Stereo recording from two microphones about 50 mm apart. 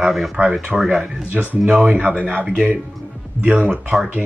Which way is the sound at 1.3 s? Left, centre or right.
Right.